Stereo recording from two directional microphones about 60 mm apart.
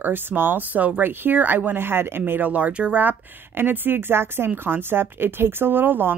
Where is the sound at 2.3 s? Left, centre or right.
Right.